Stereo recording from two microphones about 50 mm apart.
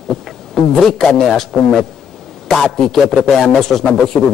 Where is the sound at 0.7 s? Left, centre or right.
Centre.